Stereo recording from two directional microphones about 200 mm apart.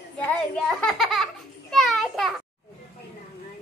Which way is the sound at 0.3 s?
5° left (ahead or behind).